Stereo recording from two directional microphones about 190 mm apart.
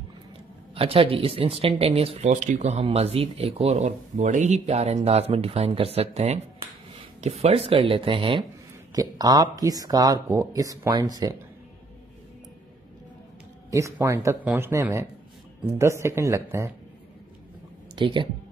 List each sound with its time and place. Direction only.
0.7 s speech: 30° right (ahead or behind)
13.7 s speech: 15° right (ahead or behind)
17.9 s speech: 25° right (ahead or behind)